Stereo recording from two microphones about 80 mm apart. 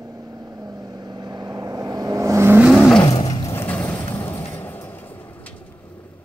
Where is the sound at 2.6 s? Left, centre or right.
Centre.